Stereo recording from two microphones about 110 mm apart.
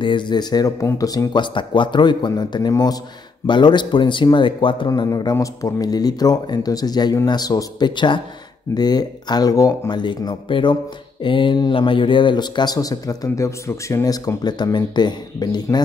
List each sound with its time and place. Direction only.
0.0 s speech: 45° left (ahead or behind)
4.8 s speech: 35° left (ahead or behind)